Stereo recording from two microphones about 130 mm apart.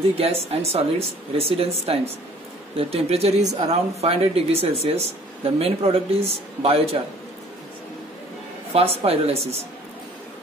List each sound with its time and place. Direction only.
0.2 s speech: 50° right (ahead or behind)
8.7 s speech: 50° right (ahead or behind)